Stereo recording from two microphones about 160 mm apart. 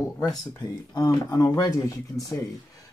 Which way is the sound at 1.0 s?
20° left (ahead or behind).